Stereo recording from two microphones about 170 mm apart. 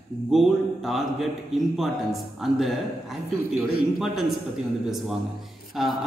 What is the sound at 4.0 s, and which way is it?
Speech, centre (ahead or behind).